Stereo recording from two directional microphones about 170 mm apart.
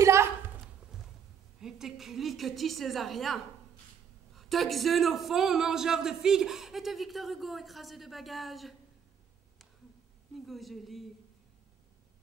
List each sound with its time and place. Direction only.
0.0 s a sound: 15° right (ahead or behind)
1.6 s a woman's voice: centre (ahead or behind)
10.4 s a man's voice: centre (ahead or behind)